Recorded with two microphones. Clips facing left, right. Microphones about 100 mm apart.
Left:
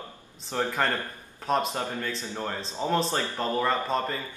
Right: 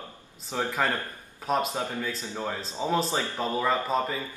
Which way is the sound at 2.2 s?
15° right (ahead or behind).